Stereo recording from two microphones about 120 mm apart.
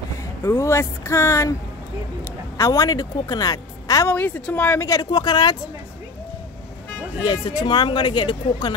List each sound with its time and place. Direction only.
0.4 s speech: 25° left (ahead or behind)
2.5 s a woman's voice: 30° left (ahead or behind)
4.1 s a woman's voice: 15° left (ahead or behind)
4.8 s a woman's voice: 35° left (ahead or behind)
7.2 s a woman's voice: 40° left (ahead or behind)